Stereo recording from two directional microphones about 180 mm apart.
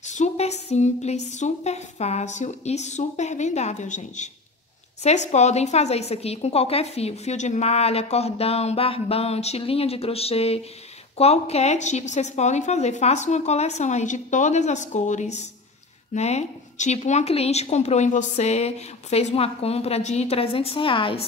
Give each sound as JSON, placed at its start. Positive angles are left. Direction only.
{"t": 0.0, "sound": "a woman's voice", "side_deg": 40}